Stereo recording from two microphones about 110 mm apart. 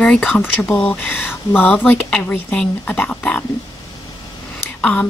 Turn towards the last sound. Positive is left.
turn(degrees=10)  # may be behind; listen again after turning